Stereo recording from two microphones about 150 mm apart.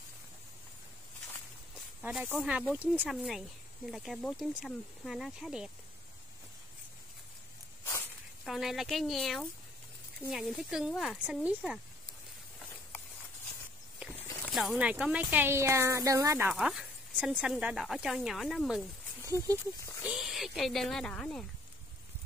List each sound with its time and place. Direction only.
2.0 s speech: 5° right (ahead or behind)
8.5 s speech: centre (ahead or behind)
14.5 s speech: 5° right (ahead or behind); by 16.4 s 20° right (ahead or behind)
16.4 s speech: 5° right (ahead or behind)
19.2 s speech: 20° right (ahead or behind)
20.0 s speech: 5° right (ahead or behind)